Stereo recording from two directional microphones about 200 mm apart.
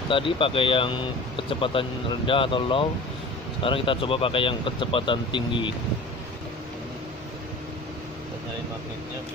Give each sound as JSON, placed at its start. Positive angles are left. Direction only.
{"t": 0.1, "sound": "speech", "side_deg": 25}